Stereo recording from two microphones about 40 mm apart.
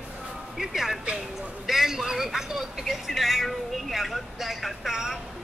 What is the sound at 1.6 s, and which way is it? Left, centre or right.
Vehicle, centre.